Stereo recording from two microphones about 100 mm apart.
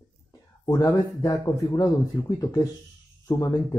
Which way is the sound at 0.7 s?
35° left (ahead or behind).